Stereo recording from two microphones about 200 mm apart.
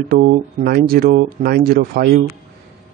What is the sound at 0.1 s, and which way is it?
Speech, 40° right (ahead or behind).